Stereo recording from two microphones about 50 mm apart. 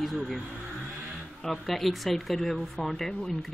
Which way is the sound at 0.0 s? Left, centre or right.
Centre.